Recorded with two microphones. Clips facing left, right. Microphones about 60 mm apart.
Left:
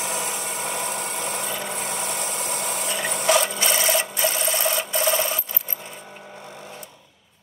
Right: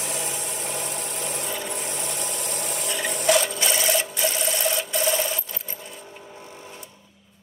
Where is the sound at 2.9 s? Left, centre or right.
Left.